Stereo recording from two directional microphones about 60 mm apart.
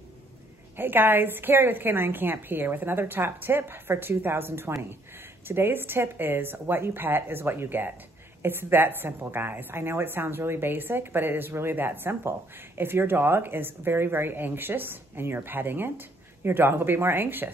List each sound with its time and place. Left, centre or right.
0.7 s a woman's voice: right